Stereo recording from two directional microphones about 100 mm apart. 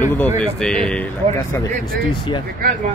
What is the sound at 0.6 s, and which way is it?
Speech, 5° left (ahead or behind).